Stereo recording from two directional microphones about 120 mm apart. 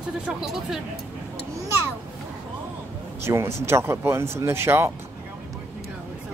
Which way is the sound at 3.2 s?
20° right (ahead or behind).